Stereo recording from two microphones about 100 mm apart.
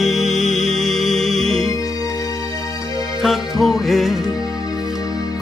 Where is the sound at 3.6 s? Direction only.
Centre (ahead or behind).